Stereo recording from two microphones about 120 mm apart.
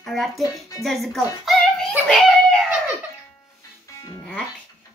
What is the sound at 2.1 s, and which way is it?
Screaming, 5° left (ahead or behind).